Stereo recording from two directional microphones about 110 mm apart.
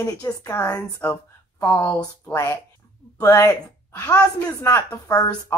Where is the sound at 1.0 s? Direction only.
20° left (ahead or behind).